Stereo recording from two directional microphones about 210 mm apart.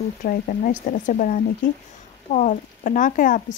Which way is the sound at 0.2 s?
40° left (ahead or behind).